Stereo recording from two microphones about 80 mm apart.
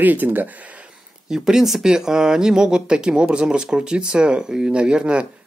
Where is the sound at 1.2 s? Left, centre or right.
Centre.